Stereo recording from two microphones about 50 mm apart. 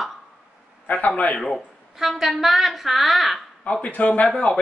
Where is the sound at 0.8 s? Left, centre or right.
Left.